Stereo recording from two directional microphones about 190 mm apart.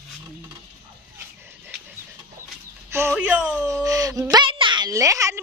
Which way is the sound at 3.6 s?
15° right (ahead or behind).